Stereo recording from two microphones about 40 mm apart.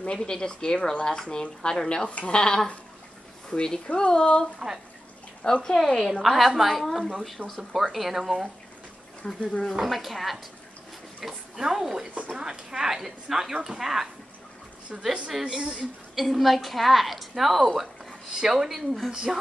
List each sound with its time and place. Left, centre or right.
0.0 s speech: left
2.0 s speech: left
2.4 s speech: centre
4.6 s speech: centre
5.4 s speech: left
5.9 s a woman's voice: centre
9.2 s speech: left
9.8 s a woman's voice: centre
12.1 s speech: right
12.4 s speech: centre
15.5 s speech: right
16.2 s a woman's voice: centre